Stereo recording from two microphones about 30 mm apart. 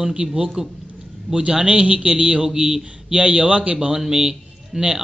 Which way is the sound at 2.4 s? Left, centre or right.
Right.